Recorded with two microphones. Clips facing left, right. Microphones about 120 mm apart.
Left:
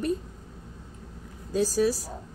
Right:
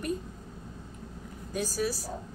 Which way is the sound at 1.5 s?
35° left (ahead or behind).